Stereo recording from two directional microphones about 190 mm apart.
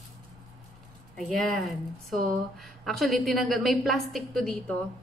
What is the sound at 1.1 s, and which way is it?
Speech, centre (ahead or behind).